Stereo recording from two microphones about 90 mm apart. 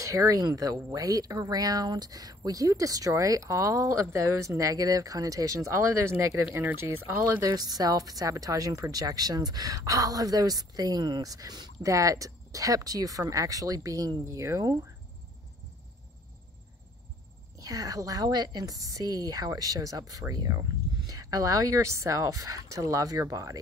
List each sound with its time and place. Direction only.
0.0 s a woman's voice: 40° right (ahead or behind)
7.4 s a woman's voice: 45° right (ahead or behind)
17.6 s a woman's voice: 45° right (ahead or behind)